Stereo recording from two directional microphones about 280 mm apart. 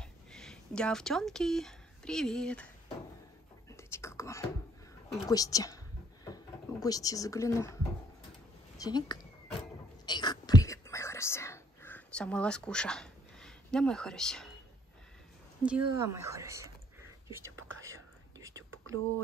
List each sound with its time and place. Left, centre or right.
0.0 s speech: centre
3.7 s whispering: centre
5.3 s a woman's voice: centre
10.0 s whispering: centre
15.6 s speech: centre
17.6 s whispering: right
17.8 s whispering: centre